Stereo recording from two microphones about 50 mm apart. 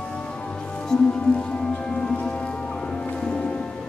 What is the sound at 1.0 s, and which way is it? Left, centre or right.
Music, centre.